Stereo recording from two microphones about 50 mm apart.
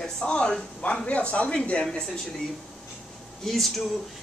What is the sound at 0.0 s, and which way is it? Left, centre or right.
Speech, centre.